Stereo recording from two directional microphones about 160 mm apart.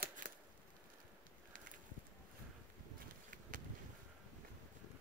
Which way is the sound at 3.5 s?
55° right (ahead or behind).